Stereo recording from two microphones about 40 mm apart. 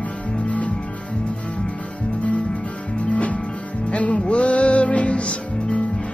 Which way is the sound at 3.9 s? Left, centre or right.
Left.